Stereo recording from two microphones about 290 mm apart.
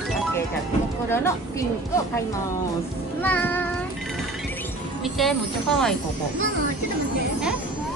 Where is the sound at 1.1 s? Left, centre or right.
Centre.